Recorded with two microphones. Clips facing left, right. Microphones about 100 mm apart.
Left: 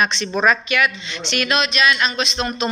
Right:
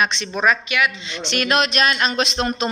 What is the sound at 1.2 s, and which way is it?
Speech, 40° right (ahead or behind).